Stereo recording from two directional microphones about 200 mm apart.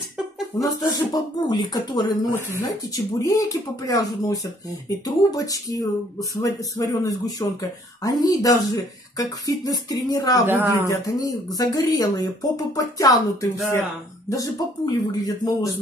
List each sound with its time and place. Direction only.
0.6 s speech: 20° left (ahead or behind)
10.4 s speech: 10° right (ahead or behind)
10.9 s speech: 20° left (ahead or behind)